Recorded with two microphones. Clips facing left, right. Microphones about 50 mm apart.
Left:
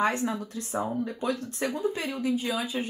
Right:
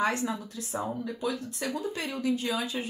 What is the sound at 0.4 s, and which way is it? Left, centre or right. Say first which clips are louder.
Speech: left 4 dB; left.